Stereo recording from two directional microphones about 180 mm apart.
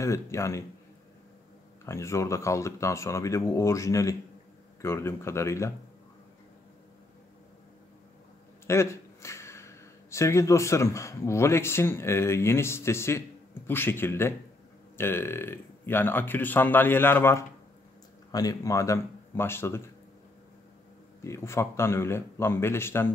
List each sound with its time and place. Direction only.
0.0 s a man's voice: 15° left (ahead or behind)
1.9 s a man's voice: 15° left (ahead or behind)
8.6 s a man's voice: 15° left (ahead or behind)
21.2 s a man's voice: 15° left (ahead or behind)